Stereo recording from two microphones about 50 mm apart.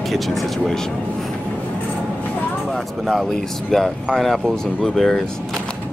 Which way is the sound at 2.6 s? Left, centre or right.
Centre.